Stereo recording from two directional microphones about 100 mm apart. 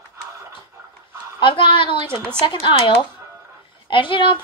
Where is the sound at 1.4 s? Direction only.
55° left (ahead or behind).